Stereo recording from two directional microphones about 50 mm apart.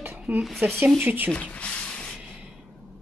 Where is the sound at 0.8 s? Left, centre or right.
Right.